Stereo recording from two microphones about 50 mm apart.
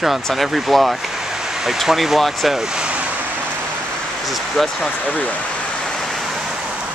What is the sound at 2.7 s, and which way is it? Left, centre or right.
Vehicle, centre.